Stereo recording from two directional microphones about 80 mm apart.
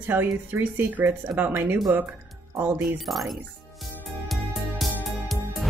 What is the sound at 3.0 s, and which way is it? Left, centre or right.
Speech, centre.